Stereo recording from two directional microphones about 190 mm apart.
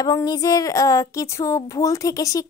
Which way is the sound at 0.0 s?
20° left (ahead or behind).